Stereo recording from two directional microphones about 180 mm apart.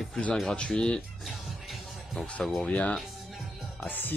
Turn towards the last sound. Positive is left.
turn(degrees=10)  # may be behind; listen again after turning